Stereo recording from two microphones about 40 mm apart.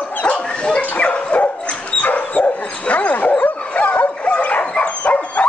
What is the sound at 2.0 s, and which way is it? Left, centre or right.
Dog, left.